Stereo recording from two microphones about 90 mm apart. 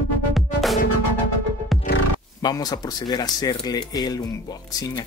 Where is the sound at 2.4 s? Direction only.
45° left (ahead or behind).